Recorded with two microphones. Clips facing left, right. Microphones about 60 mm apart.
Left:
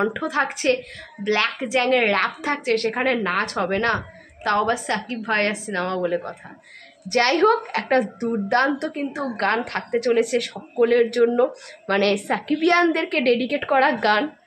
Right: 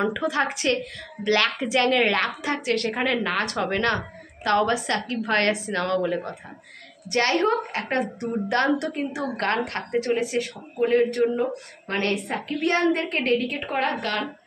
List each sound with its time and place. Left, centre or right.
0.0 s speech: left
7.1 s a woman's voice: left
8.2 s speech: left
9.9 s a woman's voice: left